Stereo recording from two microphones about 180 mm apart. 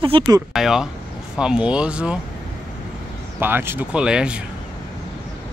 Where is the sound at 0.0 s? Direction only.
30° right (ahead or behind).